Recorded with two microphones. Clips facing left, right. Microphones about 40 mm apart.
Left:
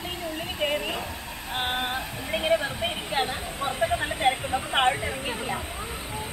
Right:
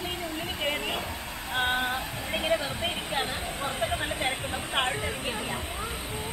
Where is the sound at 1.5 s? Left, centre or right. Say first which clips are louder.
Right 1 dB; left.